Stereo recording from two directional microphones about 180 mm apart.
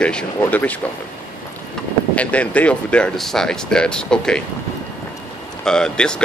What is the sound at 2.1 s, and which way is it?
Speech, 5° left (ahead or behind).